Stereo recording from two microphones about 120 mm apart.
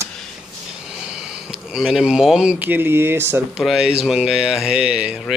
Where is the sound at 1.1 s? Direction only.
5° right (ahead or behind).